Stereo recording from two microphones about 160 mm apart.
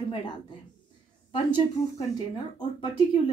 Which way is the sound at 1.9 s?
25° left (ahead or behind).